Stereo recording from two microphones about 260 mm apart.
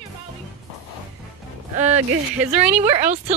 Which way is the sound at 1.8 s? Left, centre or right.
Right.